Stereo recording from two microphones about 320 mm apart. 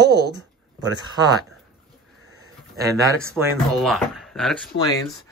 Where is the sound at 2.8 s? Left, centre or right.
Centre.